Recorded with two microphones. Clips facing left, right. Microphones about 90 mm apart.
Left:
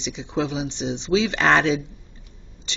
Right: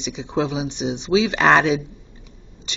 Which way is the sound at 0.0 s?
15° right (ahead or behind).